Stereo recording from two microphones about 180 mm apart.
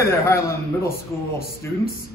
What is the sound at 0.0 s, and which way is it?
Speech, 15° left (ahead or behind).